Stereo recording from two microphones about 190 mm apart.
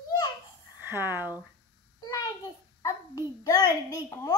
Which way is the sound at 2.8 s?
20° left (ahead or behind).